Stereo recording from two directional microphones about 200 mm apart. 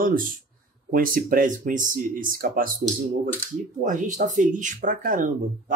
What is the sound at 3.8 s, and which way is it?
Speech, 40° right (ahead or behind).